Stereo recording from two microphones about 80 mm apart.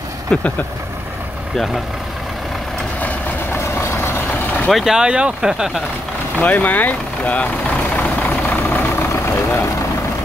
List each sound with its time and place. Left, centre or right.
0.3 s speech: centre
3.5 s vehicle: left
4.6 s speech: centre
6.4 s speech: centre
7.9 s vehicle: centre
9.1 s vehicle: left